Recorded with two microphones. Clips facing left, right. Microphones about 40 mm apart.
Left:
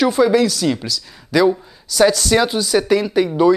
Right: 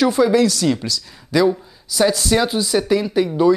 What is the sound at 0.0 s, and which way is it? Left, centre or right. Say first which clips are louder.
Speech: left 1 dB; left.